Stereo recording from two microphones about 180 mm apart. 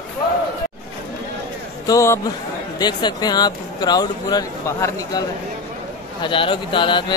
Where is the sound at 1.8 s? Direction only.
15° left (ahead or behind).